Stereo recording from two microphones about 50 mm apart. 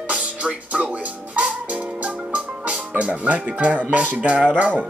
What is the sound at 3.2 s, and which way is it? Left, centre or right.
Speech, right.